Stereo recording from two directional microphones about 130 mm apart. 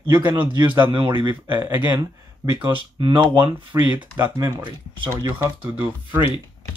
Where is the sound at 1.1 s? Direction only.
35° right (ahead or behind).